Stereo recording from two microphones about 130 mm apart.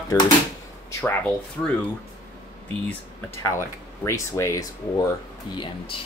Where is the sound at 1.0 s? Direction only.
15° left (ahead or behind).